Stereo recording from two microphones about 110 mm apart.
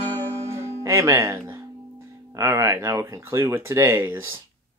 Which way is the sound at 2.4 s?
25° right (ahead or behind).